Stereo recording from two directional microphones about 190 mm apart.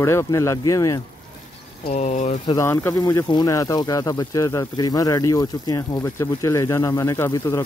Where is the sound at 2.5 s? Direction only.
15° left (ahead or behind).